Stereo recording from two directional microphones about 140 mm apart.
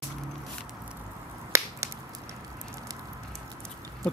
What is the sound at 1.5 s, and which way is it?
Finger snapping, 20° right (ahead or behind).